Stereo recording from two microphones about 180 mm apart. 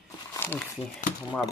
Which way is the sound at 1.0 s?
45° left (ahead or behind).